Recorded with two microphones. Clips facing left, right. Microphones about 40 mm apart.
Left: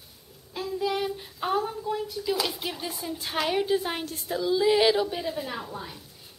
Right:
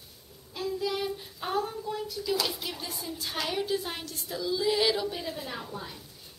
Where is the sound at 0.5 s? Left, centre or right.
Centre; by 4.4 s left.